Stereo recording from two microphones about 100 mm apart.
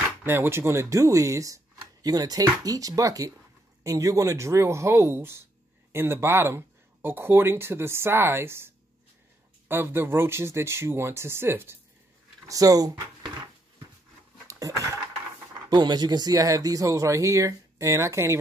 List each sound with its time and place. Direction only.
0.2 s speech: 20° right (ahead or behind)
12.4 s speech: 35° right (ahead or behind)
14.5 s a sound: 35° right (ahead or behind)
15.7 s speech: 45° right (ahead or behind); by 18.4 s 30° right (ahead or behind)